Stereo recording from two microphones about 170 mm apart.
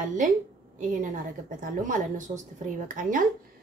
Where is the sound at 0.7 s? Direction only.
50° right (ahead or behind).